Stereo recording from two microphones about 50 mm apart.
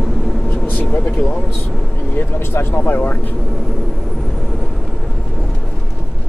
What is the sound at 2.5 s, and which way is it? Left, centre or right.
Speech, left.